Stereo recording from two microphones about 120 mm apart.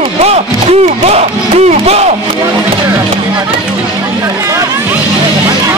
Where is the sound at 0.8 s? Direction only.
60° right (ahead or behind).